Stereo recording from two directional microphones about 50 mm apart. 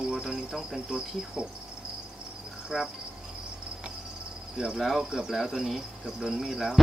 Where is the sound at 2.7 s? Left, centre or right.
Centre.